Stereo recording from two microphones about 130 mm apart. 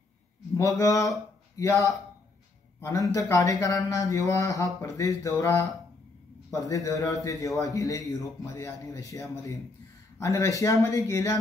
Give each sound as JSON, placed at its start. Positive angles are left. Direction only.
{"t": 0.6, "sound": "a man's voice", "side_deg": 25}